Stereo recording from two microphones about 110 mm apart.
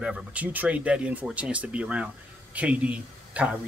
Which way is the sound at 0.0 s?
10° right (ahead or behind).